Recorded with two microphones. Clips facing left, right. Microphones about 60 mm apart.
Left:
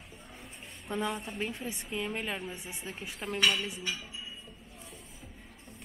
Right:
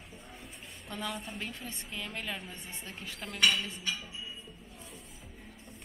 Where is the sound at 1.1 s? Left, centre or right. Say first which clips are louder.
Left 2 dB; centre.